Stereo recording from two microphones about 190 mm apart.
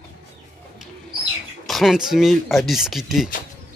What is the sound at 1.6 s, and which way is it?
Speech, centre (ahead or behind).